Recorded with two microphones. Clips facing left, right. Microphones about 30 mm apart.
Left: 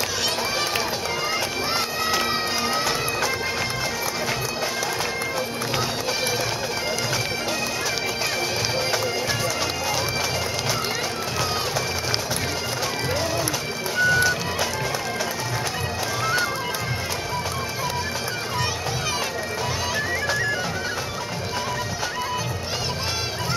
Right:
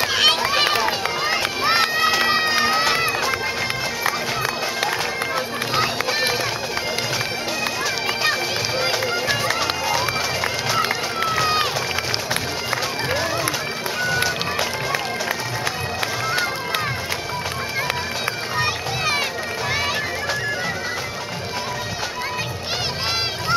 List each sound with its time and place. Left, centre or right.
0.0 s run: right
5.8 s run: right
11.3 s run: right
14.1 s music: right
18.6 s music: right